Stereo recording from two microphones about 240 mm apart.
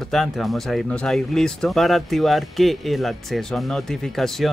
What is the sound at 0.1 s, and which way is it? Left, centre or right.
Speech, centre.